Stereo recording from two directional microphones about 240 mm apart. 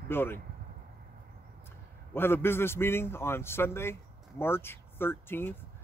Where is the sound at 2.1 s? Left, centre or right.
Centre.